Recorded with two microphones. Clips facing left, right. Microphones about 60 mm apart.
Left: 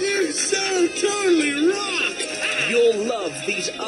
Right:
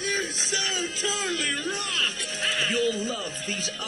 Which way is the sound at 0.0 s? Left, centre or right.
Left.